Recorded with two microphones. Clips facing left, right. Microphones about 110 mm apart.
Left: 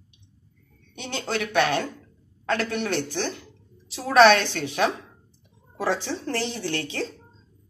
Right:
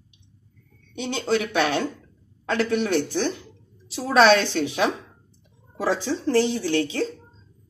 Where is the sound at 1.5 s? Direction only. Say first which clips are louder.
Even; 10° right (ahead or behind).